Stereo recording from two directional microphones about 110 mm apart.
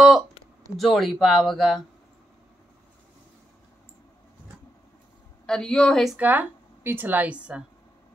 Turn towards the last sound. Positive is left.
turn(degrees=-10)  # may be behind; listen again after turning